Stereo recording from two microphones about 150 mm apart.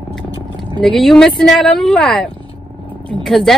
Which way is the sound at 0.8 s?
Centre (ahead or behind).